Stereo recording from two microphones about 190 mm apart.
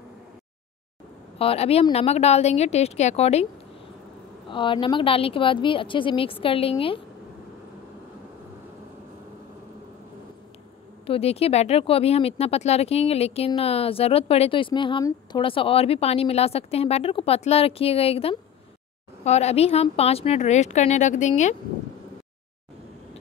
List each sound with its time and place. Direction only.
1.4 s speech: 30° left (ahead or behind)
4.5 s a woman's voice: 25° left (ahead or behind)
11.1 s speech: 30° left (ahead or behind)